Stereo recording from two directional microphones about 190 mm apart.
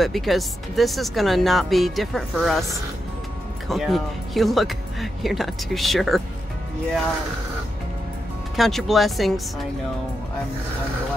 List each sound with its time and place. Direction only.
0.0 s speech: centre (ahead or behind)
3.6 s speech: centre (ahead or behind)
8.5 s speech: centre (ahead or behind)